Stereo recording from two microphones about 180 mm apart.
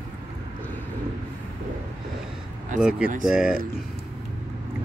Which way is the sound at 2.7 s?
5° right (ahead or behind).